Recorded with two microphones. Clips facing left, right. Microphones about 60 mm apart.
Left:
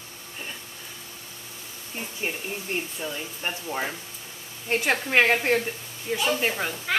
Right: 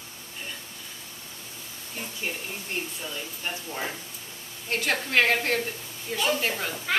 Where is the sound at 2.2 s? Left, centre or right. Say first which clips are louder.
Left 4 dB; left.